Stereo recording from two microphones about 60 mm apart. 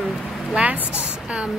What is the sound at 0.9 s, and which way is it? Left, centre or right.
Speech, centre.